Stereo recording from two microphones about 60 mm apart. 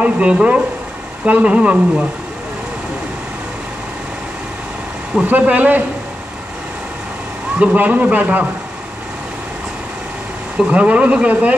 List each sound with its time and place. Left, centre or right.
0.0 s a man's voice: centre
5.4 s a man's voice: right
7.5 s a man's voice: right
10.6 s a man's voice: right